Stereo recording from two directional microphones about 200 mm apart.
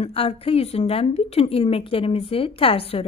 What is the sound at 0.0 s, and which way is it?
Speech, 30° left (ahead or behind).